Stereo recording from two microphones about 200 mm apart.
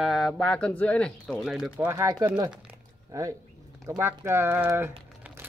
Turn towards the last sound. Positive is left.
turn(degrees=-10)  # may be behind; listen again after turning